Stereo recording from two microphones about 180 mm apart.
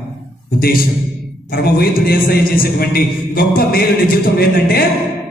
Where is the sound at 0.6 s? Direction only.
55° left (ahead or behind).